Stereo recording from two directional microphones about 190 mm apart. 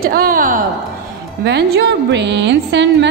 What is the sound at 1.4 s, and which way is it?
A woman's voice, 65° right (ahead or behind).